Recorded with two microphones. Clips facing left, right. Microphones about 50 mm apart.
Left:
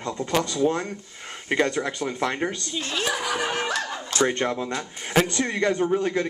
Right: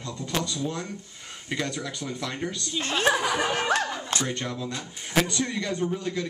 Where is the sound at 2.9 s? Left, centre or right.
Right.